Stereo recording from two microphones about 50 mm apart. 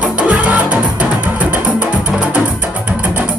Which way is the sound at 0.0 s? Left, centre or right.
Right.